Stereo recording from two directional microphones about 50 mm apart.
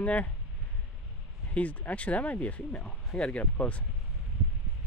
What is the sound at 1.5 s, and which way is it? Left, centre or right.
Speech, left.